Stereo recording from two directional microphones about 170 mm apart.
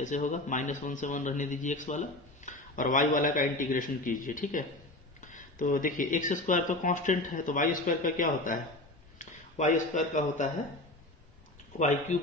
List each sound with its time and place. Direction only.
0.0 s speech: 45° left (ahead or behind)
11.8 s speech: 45° left (ahead or behind)